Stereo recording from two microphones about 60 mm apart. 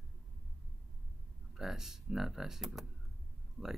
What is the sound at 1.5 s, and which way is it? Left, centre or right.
Speech, centre.